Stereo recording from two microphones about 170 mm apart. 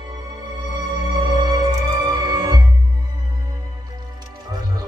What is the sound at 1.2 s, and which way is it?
Music, 25° right (ahead or behind).